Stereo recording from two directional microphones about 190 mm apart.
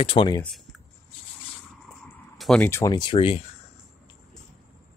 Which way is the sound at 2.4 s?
5° left (ahead or behind).